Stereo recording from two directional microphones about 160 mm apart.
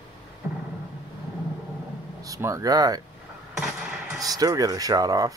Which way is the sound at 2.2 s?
20° right (ahead or behind).